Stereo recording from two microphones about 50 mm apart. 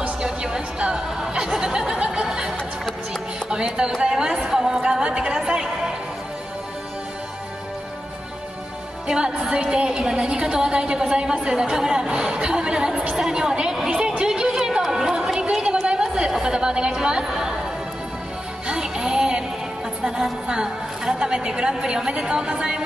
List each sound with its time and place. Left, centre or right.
0.2 s music: centre
3.4 s a woman's voice: centre
9.0 s a woman's voice: centre
13.9 s chatter: centre
18.7 s music: centre
20.0 s a woman's voice: centre